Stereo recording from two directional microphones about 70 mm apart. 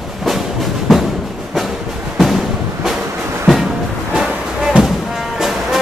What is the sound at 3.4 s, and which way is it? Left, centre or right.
Music, centre.